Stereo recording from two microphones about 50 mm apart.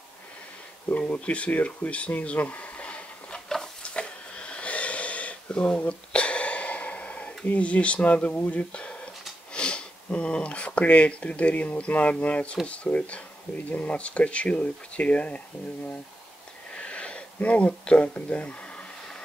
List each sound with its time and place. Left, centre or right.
0.9 s a sound: left
8.4 s speech: left
16.7 s sniff: left